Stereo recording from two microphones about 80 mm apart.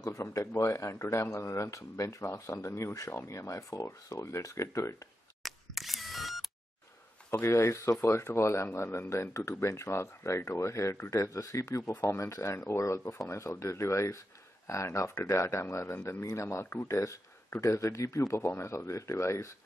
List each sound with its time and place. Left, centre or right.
0.0 s speech: left
5.4 s camera: centre
7.2 s speech: left